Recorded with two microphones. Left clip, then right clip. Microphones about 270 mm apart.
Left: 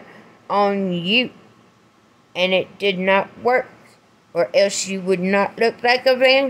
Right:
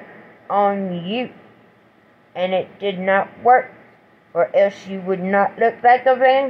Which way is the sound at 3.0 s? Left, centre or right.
Left.